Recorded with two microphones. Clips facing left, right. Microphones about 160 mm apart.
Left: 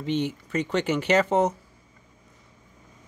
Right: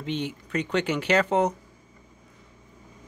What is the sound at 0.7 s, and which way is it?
Speech, 10° left (ahead or behind).